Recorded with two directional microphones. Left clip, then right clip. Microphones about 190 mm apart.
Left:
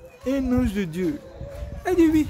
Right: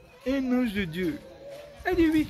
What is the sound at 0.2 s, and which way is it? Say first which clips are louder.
Speech: left 3 dB; 5° left (ahead or behind).